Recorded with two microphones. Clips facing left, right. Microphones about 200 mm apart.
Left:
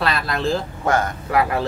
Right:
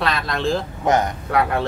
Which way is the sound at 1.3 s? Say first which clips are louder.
Even; centre (ahead or behind).